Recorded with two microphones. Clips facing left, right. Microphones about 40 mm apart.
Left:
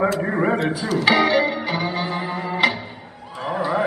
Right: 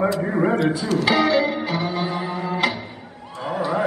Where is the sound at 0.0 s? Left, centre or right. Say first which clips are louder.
Even; left.